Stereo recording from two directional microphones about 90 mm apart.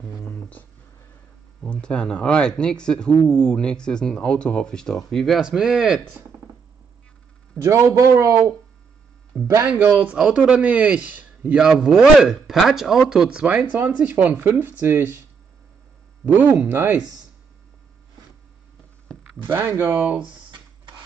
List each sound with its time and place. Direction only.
0.3 s a sound: 20° left (ahead or behind)
1.6 s speech: 10° left (ahead or behind); by 6.0 s 5° right (ahead or behind)
7.6 s a man's voice: 35° right (ahead or behind)
9.3 s speech: 5° right (ahead or behind)
9.7 s a man's voice: 15° right (ahead or behind)
13.5 s speech: 20° right (ahead or behind)
16.3 s speech: 20° right (ahead or behind)
19.1 s a sound: 10° left (ahead or behind)
19.4 s speech: 25° right (ahead or behind)
19.9 s a man's voice: 10° right (ahead or behind)